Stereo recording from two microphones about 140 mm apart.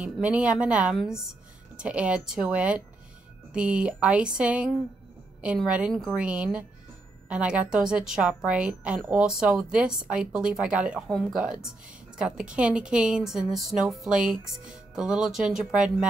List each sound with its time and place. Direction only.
0.0 s a woman's voice: 10° right (ahead or behind)
5.7 s a woman's voice: 5° right (ahead or behind)